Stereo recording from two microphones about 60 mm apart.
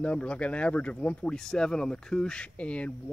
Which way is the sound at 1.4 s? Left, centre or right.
Centre.